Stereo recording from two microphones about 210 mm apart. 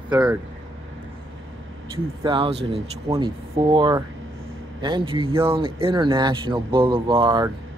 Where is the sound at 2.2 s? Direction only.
25° right (ahead or behind).